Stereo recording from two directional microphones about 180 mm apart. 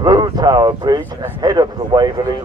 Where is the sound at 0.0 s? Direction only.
20° right (ahead or behind).